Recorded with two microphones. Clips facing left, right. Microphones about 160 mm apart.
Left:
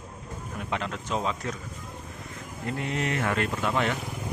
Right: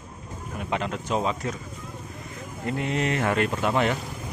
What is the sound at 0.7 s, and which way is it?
Speech, 15° right (ahead or behind).